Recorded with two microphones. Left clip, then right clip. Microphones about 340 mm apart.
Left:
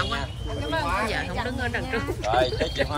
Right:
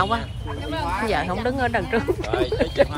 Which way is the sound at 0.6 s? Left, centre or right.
Centre.